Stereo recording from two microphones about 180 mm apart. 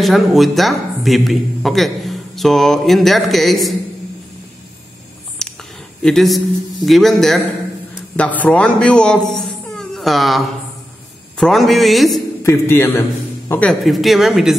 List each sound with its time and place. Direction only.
0.0 s a man's voice: centre (ahead or behind)
5.4 s a sound: centre (ahead or behind)
6.9 s a man's voice: centre (ahead or behind)
12.4 s a man's voice: 15° left (ahead or behind)